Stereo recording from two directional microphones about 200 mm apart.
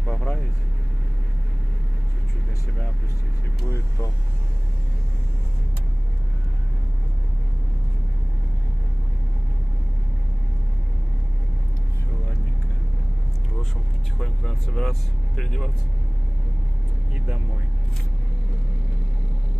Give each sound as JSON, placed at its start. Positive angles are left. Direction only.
{"t": 0.1, "sound": "vehicle", "side_deg": 5}
{"t": 14.2, "sound": "speech", "side_deg": 0}